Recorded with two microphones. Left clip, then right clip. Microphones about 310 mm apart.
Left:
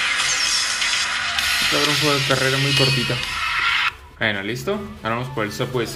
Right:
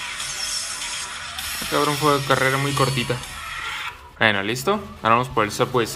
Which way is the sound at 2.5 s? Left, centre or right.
Centre.